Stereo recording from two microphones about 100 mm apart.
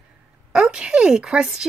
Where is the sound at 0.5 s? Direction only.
10° right (ahead or behind).